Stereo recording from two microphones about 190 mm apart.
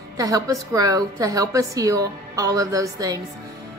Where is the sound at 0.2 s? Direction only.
20° right (ahead or behind).